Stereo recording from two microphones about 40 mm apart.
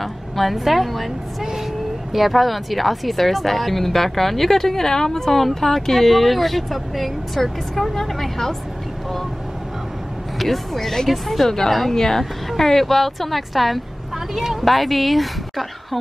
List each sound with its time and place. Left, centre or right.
0.0 s a woman's voice: centre
2.1 s a woman's voice: centre
10.4 s speech: centre